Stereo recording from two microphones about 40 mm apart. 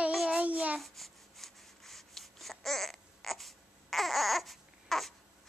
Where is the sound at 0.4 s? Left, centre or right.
Right.